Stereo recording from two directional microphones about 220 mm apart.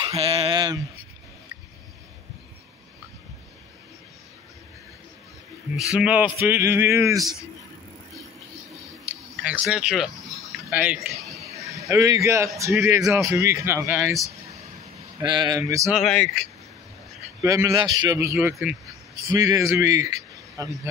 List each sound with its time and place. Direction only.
0.0 s a sound: 25° right (ahead or behind)
5.8 s a man's voice: 5° right (ahead or behind)
9.0 s a sound: 5° right (ahead or behind)
11.6 s a man's voice: 15° right (ahead or behind)
15.2 s speech: 20° right (ahead or behind)
15.9 s a man's voice: centre (ahead or behind)
17.4 s a man's voice: 15° right (ahead or behind)